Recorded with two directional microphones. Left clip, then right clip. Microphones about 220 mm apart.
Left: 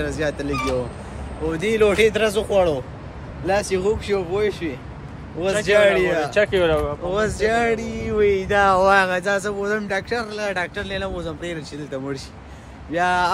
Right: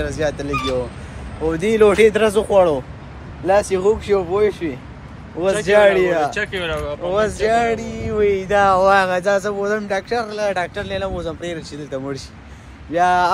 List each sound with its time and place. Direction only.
0.0 s speech: centre (ahead or behind)
1.5 s speech: 20° right (ahead or behind)
6.3 s speech: 45° left (ahead or behind)
7.1 s speech: centre (ahead or behind)